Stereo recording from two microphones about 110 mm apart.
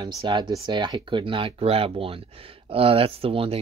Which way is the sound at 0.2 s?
45° right (ahead or behind).